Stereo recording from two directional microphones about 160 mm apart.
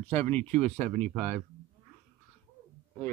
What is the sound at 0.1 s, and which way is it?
A man's voice, 10° left (ahead or behind).